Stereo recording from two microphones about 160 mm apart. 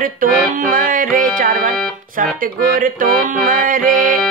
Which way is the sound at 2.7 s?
60° right (ahead or behind).